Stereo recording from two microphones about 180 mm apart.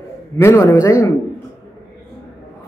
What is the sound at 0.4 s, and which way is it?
Speech, 15° left (ahead or behind).